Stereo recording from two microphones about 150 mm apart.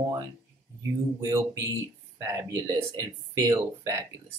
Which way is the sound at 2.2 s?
20° right (ahead or behind).